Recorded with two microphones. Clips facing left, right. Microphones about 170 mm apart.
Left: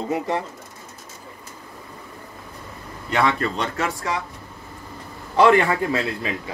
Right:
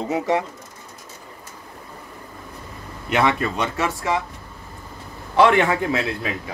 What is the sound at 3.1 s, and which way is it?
Speech, 20° right (ahead or behind).